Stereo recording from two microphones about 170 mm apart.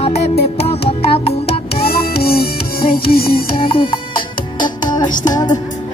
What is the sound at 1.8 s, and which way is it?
Music, 65° left (ahead or behind).